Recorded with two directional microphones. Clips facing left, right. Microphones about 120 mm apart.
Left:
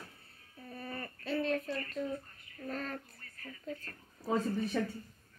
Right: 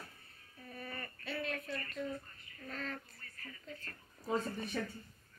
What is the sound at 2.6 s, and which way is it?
Speech, 40° left (ahead or behind).